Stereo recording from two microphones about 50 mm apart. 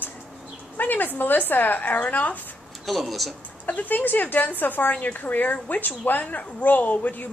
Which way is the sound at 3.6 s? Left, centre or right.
Left.